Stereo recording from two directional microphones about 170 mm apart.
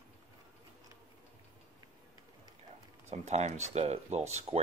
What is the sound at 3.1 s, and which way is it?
Speech, 40° right (ahead or behind).